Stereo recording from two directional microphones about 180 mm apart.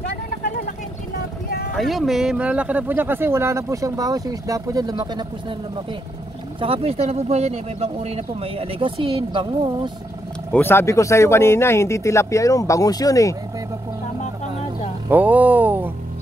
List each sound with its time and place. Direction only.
1.7 s speech: centre (ahead or behind); by 5.2 s 20° right (ahead or behind)
6.6 s speech: 30° right (ahead or behind)
10.5 s speech: 10° left (ahead or behind)
15.0 s speech: 10° right (ahead or behind)